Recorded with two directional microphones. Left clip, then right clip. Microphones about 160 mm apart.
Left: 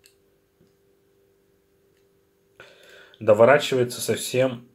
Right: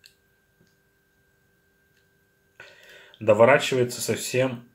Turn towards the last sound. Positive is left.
turn(degrees=5)  # may be behind; listen again after turning